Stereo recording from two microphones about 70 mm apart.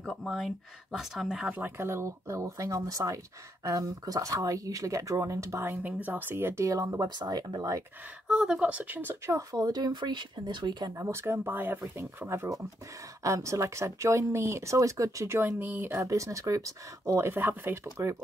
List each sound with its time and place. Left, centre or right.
0.0 s speech: centre
1.5 s speech: right
5.6 s speech: right
6.7 s speech: right
7.1 s speech: right
8.3 s speech: centre; by 9.4 s right
9.5 s speech: right
11.0 s speech: right
11.8 s speech: right
16.0 s speech: right
17.2 s speech: right